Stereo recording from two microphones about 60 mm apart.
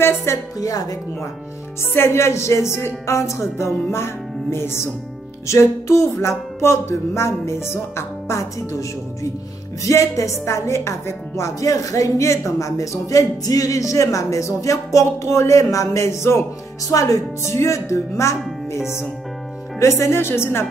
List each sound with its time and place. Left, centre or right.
0.0 s music: left
0.6 s speech: left
1.8 s music: left
9.8 s speech: left
16.9 s speech: left
17.4 s speech: left
19.8 s music: left